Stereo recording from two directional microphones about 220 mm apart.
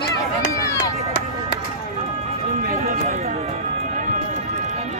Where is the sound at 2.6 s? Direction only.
35° right (ahead or behind).